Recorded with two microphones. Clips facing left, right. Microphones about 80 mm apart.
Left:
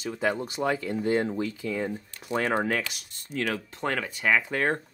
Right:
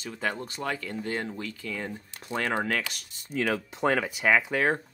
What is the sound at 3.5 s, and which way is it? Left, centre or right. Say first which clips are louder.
Speech: right 5 dB; centre.